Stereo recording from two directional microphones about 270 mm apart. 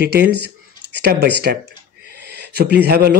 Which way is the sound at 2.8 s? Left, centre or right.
Right.